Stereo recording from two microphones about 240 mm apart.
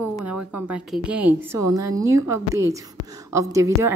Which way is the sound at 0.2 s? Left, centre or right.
Centre.